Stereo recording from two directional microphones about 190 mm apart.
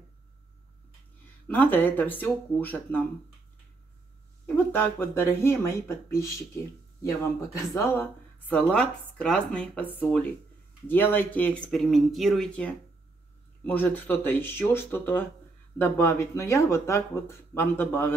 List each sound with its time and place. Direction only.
1.5 s speech: 10° left (ahead or behind)
4.6 s speech: 10° left (ahead or behind)
10.9 s speech: 10° left (ahead or behind)